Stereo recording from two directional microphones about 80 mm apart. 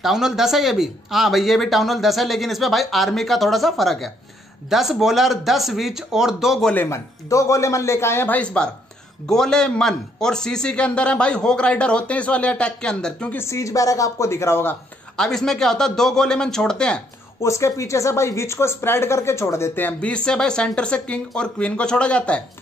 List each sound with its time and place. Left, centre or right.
0.0 s speech: centre
6.9 s speech: left
8.4 s a man's voice: centre
13.3 s speech: left
15.1 s a man's voice: centre
17.4 s speech: left; by 22.4 s centre